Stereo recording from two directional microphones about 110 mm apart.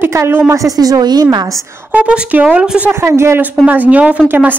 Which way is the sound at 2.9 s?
25° right (ahead or behind).